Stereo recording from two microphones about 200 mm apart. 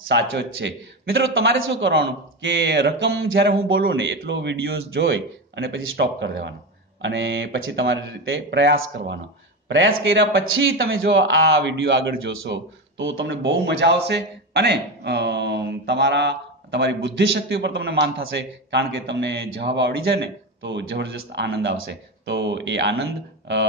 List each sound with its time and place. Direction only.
0.1 s a man's voice: 60° right (ahead or behind)
3.8 s a man's voice: 60° right (ahead or behind); by 11.0 s 85° right
11.1 s a man's voice: 65° right (ahead or behind)